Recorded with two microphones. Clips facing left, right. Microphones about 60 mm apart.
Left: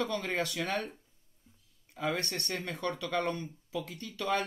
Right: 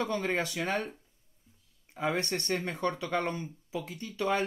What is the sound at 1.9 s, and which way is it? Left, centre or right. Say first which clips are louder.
Speech: right 3 dB; right.